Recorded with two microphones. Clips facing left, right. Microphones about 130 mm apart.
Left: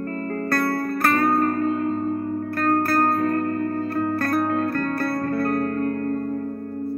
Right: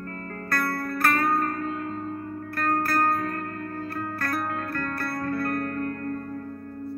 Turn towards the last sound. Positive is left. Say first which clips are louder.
# left 5 dB
turn(degrees=30)  # may be behind; listen again after turning